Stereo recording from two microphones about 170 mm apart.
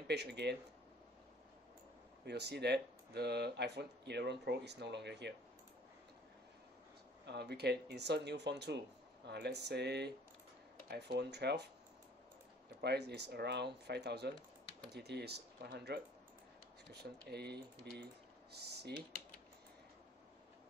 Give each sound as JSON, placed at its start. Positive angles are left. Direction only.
{"t": 0.1, "sound": "speech", "side_deg": -80}
{"t": 2.2, "sound": "speech", "side_deg": -75}
{"t": 7.2, "sound": "speech", "side_deg": -75}
{"t": 12.8, "sound": "speech", "side_deg": -75}
{"t": 17.3, "sound": "speech", "side_deg": -75}